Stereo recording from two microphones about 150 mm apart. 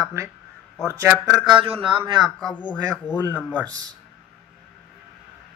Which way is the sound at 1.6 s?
35° right (ahead or behind).